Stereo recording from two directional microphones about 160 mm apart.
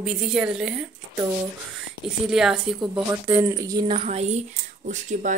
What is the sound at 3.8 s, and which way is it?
Speech, 35° right (ahead or behind).